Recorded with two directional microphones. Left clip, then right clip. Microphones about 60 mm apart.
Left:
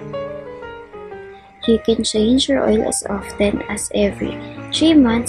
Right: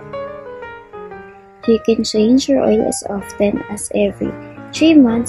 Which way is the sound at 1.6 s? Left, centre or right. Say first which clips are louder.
Right 2 dB; right.